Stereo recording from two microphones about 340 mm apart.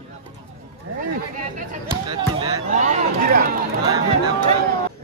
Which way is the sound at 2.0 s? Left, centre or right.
Centre.